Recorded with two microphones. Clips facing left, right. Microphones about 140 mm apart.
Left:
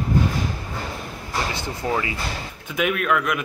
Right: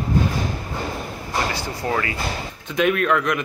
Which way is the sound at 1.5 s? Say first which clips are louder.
Right 1 dB; 20° left (ahead or behind).